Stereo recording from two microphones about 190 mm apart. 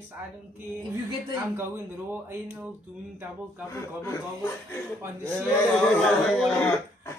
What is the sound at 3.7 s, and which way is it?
Speech, 15° left (ahead or behind).